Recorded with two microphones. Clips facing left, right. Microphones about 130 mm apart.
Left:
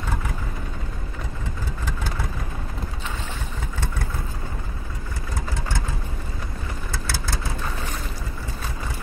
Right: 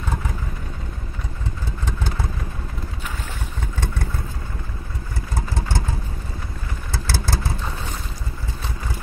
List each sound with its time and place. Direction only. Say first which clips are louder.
6.9 s vehicle: right 5 dB; 35° right (ahead or behind)